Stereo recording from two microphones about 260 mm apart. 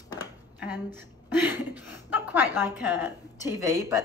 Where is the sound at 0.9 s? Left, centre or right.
Centre.